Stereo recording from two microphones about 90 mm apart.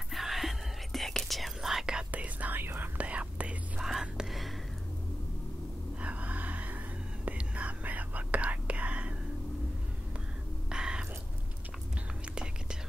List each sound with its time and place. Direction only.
0.1 s whispering: centre (ahead or behind)
5.9 s a sound: 15° right (ahead or behind)
7.2 s whispering: 15° right (ahead or behind)
10.7 s music: 10° right (ahead or behind)